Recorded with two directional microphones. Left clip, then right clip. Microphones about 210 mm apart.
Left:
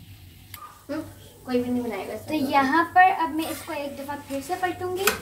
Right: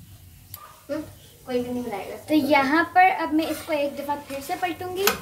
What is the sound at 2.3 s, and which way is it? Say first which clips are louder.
A woman's voice: right 2 dB; 25° right (ahead or behind).